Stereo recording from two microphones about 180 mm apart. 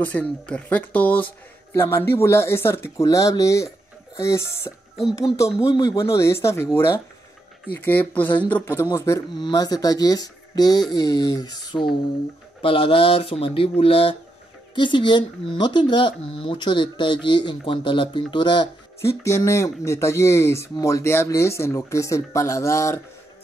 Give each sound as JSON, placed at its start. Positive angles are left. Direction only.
{"t": 0.0, "sound": "speech", "side_deg": 5}